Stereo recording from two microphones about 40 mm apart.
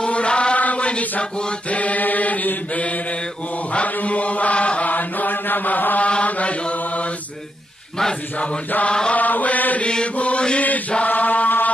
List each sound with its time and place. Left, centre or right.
0.0 s chant: left
4.8 s chant: left
6.0 s chant: left
6.6 s mantra: left
8.8 s chant: left
9.1 s chant: left